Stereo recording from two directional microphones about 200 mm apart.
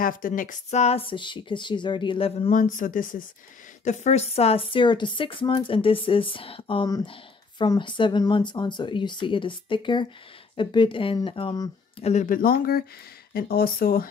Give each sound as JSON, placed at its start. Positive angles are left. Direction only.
{"t": 0.0, "sound": "speech", "side_deg": 45}
{"t": 12.0, "sound": "speech", "side_deg": 35}